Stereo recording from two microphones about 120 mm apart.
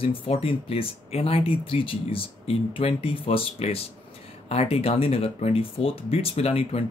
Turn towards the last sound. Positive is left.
turn(degrees=55)  # may be behind; listen again after turning